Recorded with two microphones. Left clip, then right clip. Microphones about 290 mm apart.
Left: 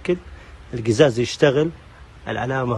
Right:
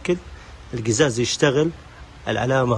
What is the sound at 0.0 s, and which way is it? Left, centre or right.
A man's voice, centre.